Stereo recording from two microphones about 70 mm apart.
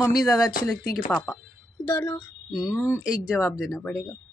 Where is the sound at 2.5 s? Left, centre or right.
Centre.